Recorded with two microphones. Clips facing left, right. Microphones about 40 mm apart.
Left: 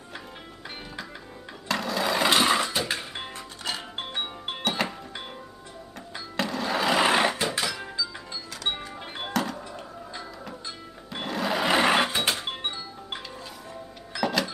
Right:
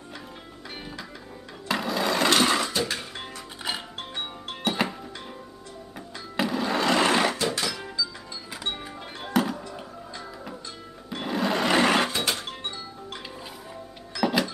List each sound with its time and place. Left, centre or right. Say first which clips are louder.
1.7 s sewing machine: right 1 dB; centre
2.2 s a sound: even; centre
4.0 s music: left 2 dB; centre
4.6 s music: right 1 dB; centre
6.3 s sewing machine: right 2 dB; centre
7.4 s music: right 1 dB; centre
9.3 s music: right 4 dB; centre
11.2 s sewing machine: right 2 dB; centre
11.6 s music: left 1 dB; centre